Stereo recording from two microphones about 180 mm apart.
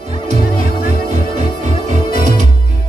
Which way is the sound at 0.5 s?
50° left (ahead or behind).